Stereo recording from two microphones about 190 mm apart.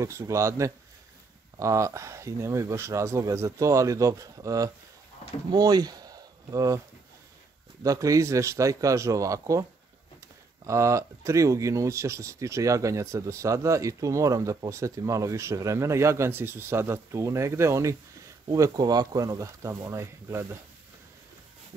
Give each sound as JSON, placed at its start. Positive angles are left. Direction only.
{"t": 0.0, "sound": "speech", "side_deg": -15}
{"t": 7.8, "sound": "speech", "side_deg": -15}